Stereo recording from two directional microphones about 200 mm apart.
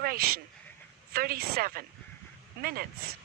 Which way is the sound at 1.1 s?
50° right (ahead or behind).